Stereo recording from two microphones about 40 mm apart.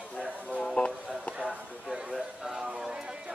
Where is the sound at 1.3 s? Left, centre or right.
Centre.